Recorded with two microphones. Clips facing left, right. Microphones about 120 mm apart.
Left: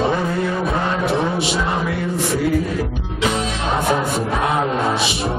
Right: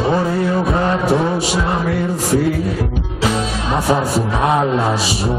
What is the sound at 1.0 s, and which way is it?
Vehicle, 40° right (ahead or behind).